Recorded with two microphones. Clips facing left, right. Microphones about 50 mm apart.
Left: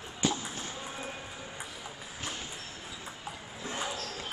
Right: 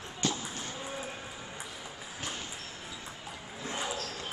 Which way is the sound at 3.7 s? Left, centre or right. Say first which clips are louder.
Even; centre.